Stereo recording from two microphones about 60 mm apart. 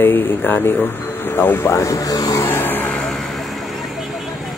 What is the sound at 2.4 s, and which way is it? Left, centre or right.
Music, left.